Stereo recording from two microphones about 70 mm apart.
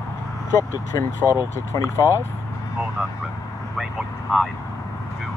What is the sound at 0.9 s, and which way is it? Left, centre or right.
Speech, left.